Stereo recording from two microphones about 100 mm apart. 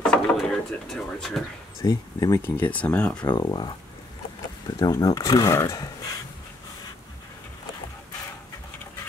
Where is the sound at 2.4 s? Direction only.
15° left (ahead or behind).